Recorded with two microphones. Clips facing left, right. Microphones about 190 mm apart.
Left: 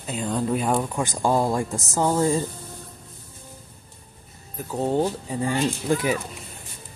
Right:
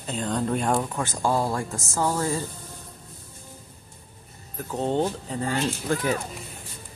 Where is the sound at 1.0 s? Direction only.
15° left (ahead or behind).